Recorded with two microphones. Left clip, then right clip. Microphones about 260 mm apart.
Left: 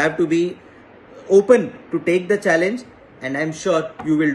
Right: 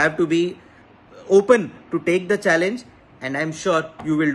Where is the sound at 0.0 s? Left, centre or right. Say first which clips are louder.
Left 1 dB; centre.